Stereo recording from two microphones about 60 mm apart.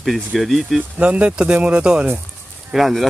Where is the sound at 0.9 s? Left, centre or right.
Right.